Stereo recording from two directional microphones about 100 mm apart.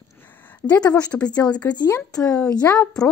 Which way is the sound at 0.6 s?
10° left (ahead or behind).